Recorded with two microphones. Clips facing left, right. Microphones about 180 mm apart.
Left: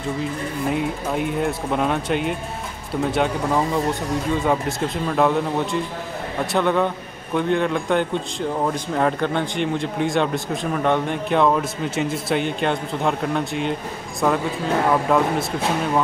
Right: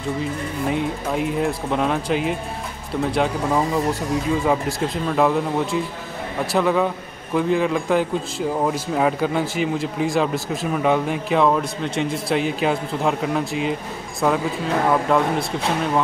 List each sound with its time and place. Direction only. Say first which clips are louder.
0.2 s a man's voice: even; centre (ahead or behind)